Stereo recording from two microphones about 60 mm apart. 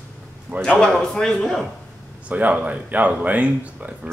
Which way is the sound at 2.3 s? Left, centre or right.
Right.